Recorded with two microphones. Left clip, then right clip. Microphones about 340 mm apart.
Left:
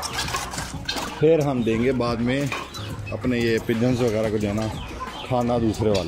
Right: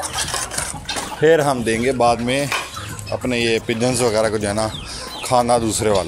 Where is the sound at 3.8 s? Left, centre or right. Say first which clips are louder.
Right 8 dB; right.